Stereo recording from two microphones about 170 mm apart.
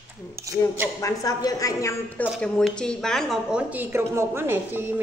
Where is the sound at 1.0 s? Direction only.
20° left (ahead or behind).